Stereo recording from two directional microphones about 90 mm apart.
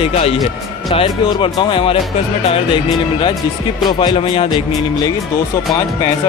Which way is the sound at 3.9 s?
55° left (ahead or behind).